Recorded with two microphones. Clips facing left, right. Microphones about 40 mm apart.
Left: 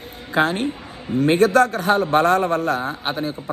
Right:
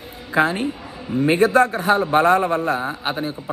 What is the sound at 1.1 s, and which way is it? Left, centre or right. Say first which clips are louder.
A man's voice: even; right.